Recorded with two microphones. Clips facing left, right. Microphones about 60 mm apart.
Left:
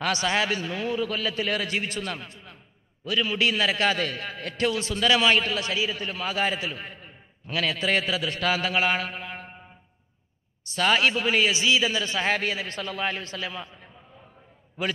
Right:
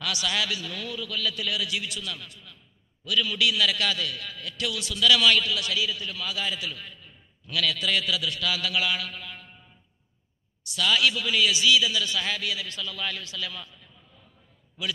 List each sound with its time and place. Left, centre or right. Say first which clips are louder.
0.0 s a man's voice: left 4 dB; left